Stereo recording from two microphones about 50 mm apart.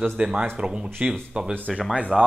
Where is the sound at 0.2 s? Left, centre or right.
Centre.